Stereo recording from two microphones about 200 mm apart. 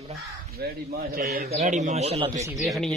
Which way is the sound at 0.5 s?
50° right (ahead or behind).